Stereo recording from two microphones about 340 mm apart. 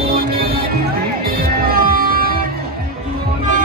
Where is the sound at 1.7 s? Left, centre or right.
Right.